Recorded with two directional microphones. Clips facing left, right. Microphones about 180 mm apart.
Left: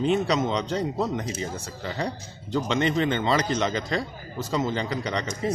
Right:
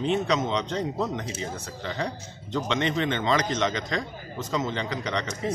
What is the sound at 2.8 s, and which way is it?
A man's voice, 35° left (ahead or behind).